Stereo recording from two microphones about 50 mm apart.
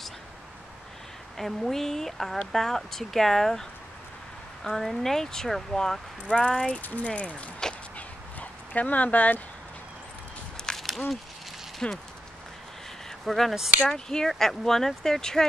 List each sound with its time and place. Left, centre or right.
1.3 s speech: centre
4.6 s speech: centre
6.2 s speech: left
6.8 s speech: left
10.8 s a sound: centre
11.8 s speech: centre
13.2 s speech: centre